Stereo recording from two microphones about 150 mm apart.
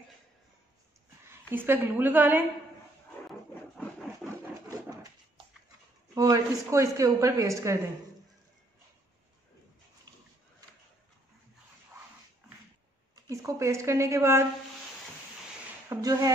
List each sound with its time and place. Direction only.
1.2 s a woman's voice: 15° right (ahead or behind)
3.3 s a sound: centre (ahead or behind)
5.4 s a sound: 35° right (ahead or behind)
6.1 s speech: 20° right (ahead or behind)
13.1 s speech: 20° right (ahead or behind)
15.9 s speech: 20° right (ahead or behind)